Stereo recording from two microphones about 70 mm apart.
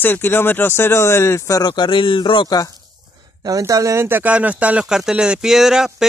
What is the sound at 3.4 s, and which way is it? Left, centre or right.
Speech, right.